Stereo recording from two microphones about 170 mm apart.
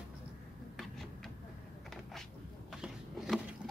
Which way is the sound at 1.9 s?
Centre (ahead or behind).